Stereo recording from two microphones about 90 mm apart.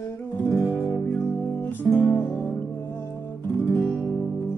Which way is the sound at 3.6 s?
20° left (ahead or behind).